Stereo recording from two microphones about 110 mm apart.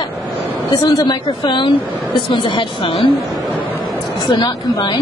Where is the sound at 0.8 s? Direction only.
40° left (ahead or behind).